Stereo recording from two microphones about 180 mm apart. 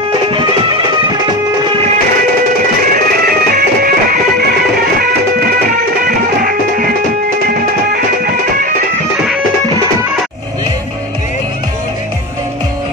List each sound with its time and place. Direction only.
0.3 s music: 30° right (ahead or behind)
3.3 s music: 55° right (ahead or behind)
5.7 s music: 50° right (ahead or behind)